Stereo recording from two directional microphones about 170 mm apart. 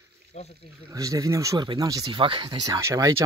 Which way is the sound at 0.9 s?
20° right (ahead or behind).